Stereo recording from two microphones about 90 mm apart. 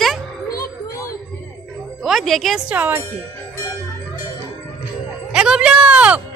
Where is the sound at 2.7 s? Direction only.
20° right (ahead or behind).